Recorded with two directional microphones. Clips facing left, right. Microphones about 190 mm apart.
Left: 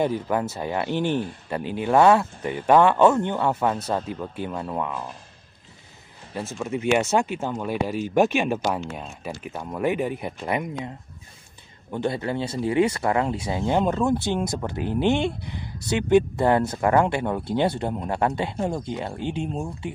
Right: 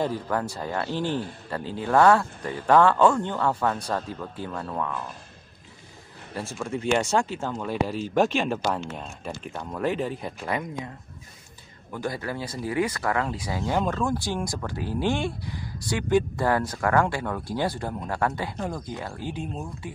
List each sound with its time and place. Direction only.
0.0 s speech: 15° left (ahead or behind)
6.3 s speech: 15° left (ahead or behind)
11.9 s speech: 25° left (ahead or behind)